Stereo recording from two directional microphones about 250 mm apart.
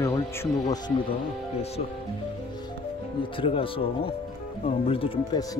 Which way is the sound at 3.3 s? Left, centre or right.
Left.